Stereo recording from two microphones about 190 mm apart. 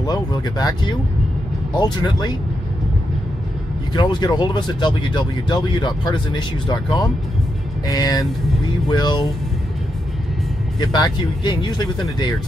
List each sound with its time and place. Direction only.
0.0 s speech: 20° left (ahead or behind)
3.9 s speech: 25° left (ahead or behind)
11.4 s speech: 20° left (ahead or behind)